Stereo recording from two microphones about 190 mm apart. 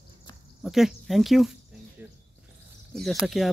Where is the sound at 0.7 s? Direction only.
Centre (ahead or behind).